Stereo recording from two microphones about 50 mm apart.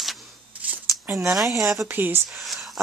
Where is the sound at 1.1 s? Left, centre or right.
Centre.